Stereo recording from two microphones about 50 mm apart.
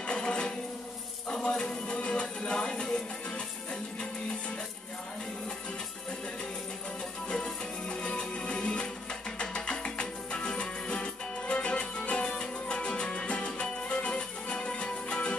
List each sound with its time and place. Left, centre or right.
0.0 s a sound: centre
1.3 s music: centre
7.2 s music: centre